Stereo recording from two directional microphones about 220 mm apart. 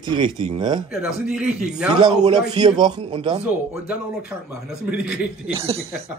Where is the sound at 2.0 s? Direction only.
20° right (ahead or behind).